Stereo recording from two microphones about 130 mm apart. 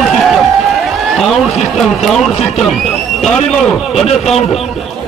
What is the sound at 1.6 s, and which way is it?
Speech, centre (ahead or behind).